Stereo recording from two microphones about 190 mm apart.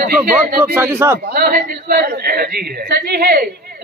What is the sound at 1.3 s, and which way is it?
A woman's voice, 55° right (ahead or behind).